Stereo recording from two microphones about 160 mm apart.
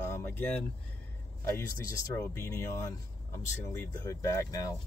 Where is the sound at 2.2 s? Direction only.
15° left (ahead or behind).